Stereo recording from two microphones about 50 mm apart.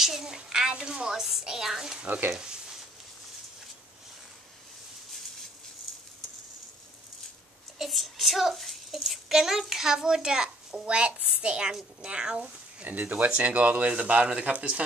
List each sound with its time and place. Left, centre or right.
0.0 s a woman's voice: centre
2.3 s a sound: centre
7.8 s a child's voice: centre
12.8 s speech: right